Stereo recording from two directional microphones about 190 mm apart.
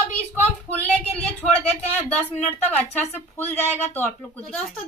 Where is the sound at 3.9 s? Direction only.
5° left (ahead or behind).